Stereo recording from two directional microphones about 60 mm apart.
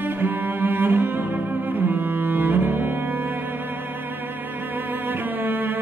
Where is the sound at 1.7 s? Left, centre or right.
Right.